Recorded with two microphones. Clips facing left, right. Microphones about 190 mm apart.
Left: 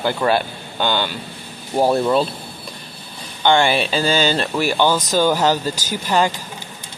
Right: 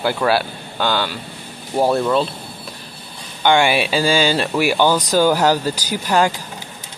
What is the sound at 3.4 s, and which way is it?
Speech, 15° right (ahead or behind).